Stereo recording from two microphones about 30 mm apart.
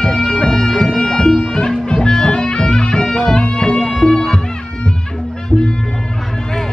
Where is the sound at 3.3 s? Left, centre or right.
Left.